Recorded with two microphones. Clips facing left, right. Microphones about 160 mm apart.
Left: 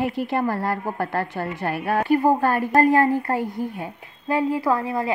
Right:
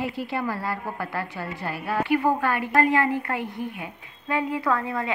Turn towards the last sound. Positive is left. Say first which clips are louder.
# left 3 dB
turn(degrees=30)  # may be behind; listen again after turning